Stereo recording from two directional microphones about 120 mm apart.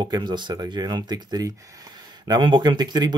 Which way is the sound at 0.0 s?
40° right (ahead or behind).